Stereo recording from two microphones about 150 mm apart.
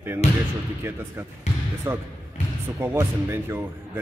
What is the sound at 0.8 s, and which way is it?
Speech, 15° right (ahead or behind).